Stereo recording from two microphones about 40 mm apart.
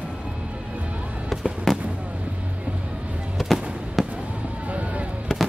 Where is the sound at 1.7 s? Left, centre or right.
Centre.